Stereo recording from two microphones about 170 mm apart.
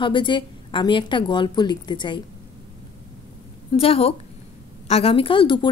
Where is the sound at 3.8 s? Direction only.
35° left (ahead or behind).